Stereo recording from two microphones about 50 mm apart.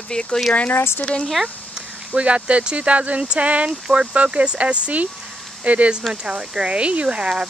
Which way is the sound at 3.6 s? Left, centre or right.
Centre.